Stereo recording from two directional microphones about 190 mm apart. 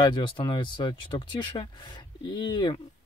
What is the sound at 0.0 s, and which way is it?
Speech, 25° left (ahead or behind).